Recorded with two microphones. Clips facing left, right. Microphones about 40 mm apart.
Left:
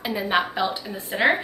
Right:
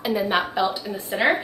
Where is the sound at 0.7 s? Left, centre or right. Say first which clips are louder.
Right 2 dB; centre.